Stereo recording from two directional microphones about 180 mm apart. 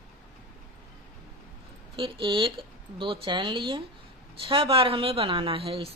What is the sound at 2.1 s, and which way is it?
A woman's voice, 30° right (ahead or behind).